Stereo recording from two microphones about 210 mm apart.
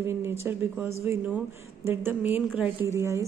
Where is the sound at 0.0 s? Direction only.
10° right (ahead or behind).